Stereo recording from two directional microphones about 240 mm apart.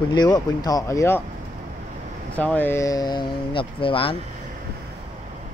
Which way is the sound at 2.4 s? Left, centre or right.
Centre.